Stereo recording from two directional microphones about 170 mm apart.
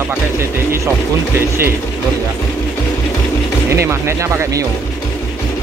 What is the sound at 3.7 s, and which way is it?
Speech, 15° right (ahead or behind).